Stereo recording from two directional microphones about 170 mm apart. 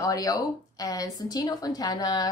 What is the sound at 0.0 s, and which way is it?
A woman's voice, 20° left (ahead or behind).